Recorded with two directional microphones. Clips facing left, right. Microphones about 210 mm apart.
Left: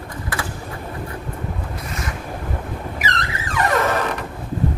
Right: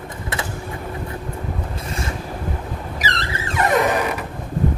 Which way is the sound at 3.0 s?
30° right (ahead or behind).